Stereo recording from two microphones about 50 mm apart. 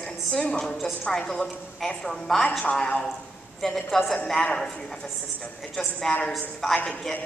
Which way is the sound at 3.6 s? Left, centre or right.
Centre.